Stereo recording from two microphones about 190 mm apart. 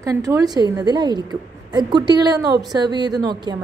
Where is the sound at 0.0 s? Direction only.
15° right (ahead or behind).